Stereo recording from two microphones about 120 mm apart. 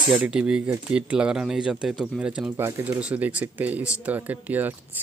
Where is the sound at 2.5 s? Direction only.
20° right (ahead or behind).